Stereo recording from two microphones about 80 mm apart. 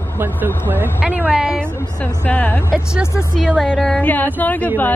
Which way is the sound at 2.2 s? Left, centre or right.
Left.